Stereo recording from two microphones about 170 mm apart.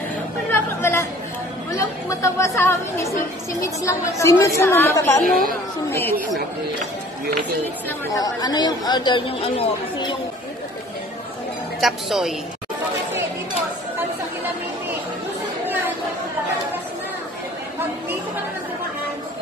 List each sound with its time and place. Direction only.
0.5 s chatter: 15° left (ahead or behind)
1.7 s speech: 20° left (ahead or behind)
5.2 s a woman's voice: 55° right (ahead or behind)
5.9 s speech: 15° left (ahead or behind)
8.1 s speech: 20° left (ahead or behind)
11.8 s a woman's voice: centre (ahead or behind)